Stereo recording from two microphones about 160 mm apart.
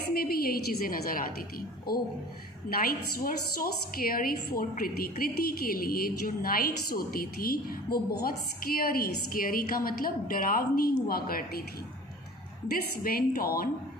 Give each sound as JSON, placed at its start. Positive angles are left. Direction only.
{"t": 0.0, "sound": "a woman's voice", "side_deg": 70}
{"t": 13.0, "sound": "a woman's voice", "side_deg": 65}